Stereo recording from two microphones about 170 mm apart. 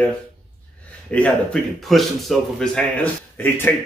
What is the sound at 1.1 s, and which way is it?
A man's voice, 5° left (ahead or behind).